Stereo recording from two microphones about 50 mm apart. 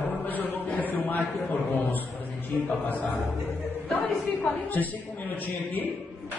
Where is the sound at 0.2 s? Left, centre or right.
Left.